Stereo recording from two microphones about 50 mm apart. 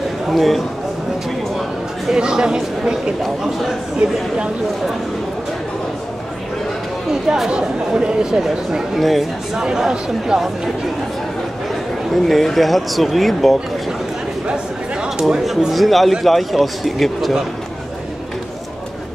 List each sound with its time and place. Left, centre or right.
0.3 s a man's voice: centre
2.1 s speech: centre
3.2 s a man's voice: centre
7.1 s speech: centre
9.6 s speech: centre
12.1 s a man's voice: centre
14.5 s a sound: centre
15.2 s a man's voice: centre